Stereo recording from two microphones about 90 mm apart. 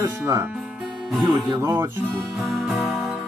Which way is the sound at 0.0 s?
35° right (ahead or behind).